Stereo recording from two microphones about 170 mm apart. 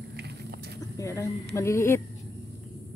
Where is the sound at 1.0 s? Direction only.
15° left (ahead or behind).